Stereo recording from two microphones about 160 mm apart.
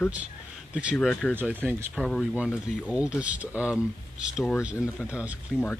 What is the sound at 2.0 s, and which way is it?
A man's voice, centre (ahead or behind).